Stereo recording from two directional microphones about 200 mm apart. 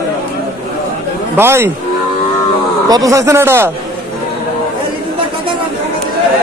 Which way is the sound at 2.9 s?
15° right (ahead or behind).